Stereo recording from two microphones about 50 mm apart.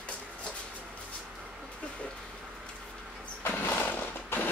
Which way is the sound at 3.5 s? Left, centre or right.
Left.